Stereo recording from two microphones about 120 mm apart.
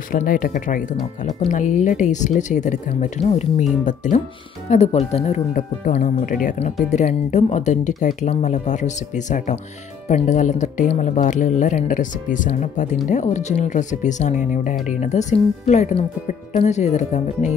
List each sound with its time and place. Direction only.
0.2 s speech: 90° left; by 3.6 s 70° left (ahead or behind)
3.8 s speech: 90° left
4.6 s speech: 70° left (ahead or behind); by 8.3 s 90° left
8.3 s speech: 75° left (ahead or behind)
10.0 s speech: 75° left (ahead or behind); by 14.8 s 90° left
14.9 s speech: 75° left (ahead or behind)